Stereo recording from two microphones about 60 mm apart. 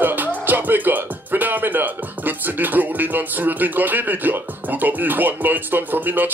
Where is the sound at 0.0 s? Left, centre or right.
Right.